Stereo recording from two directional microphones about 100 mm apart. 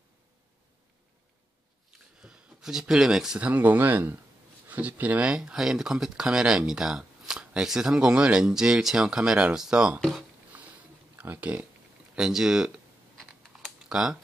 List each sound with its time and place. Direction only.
2.2 s speech: 5° right (ahead or behind)
9.9 s speech: 5° left (ahead or behind)
10.5 s boat: 15° right (ahead or behind)
11.1 s speech: 15° right (ahead or behind)
12.2 s speech: 5° right (ahead or behind)
13.2 s typing: centre (ahead or behind)